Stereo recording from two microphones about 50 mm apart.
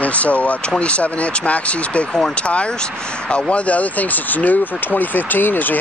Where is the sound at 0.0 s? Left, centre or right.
Left.